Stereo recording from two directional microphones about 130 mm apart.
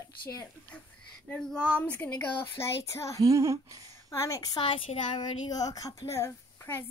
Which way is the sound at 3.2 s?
25° right (ahead or behind).